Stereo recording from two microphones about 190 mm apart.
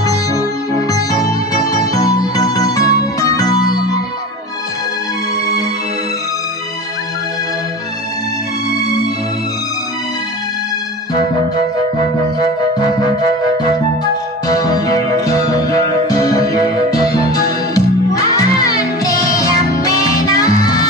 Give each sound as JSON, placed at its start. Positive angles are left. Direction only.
{"t": 0.0, "sound": "music", "side_deg": 20}
{"t": 1.6, "sound": "music", "side_deg": 20}
{"t": 8.6, "sound": "music", "side_deg": 20}
{"t": 14.5, "sound": "music", "side_deg": 20}